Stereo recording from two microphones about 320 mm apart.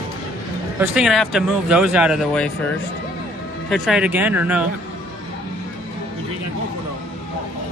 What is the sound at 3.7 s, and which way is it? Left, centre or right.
Speech, centre.